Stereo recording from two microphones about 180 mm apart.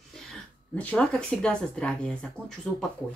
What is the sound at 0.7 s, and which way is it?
Speech, 5° left (ahead or behind).